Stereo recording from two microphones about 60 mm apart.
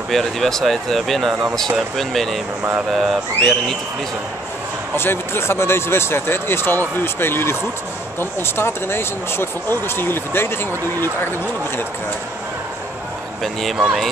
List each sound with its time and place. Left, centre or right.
0.1 s speech: centre
4.9 s speech: left
13.4 s speech: centre
13.7 s speech: centre